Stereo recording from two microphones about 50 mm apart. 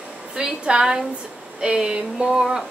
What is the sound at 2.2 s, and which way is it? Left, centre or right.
Speech, centre.